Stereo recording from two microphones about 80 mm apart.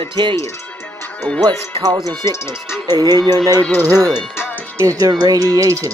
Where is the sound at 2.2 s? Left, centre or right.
Left.